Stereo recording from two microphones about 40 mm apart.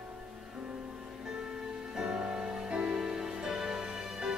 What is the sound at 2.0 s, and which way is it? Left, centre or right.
Music, centre.